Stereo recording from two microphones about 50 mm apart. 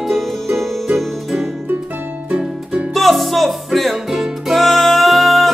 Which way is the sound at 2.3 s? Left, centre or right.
Right.